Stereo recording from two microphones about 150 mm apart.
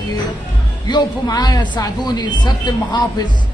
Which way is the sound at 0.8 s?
25° left (ahead or behind).